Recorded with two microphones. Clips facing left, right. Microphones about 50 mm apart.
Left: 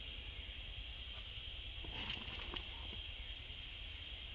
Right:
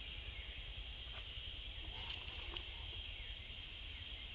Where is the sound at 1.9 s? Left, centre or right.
Left.